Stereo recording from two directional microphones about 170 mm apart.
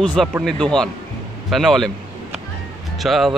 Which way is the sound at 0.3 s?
5° right (ahead or behind).